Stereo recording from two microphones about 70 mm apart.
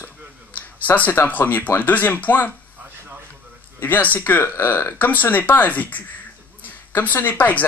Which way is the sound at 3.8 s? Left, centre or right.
Left.